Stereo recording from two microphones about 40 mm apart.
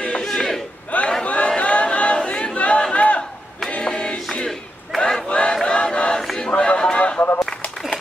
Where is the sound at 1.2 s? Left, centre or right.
Left.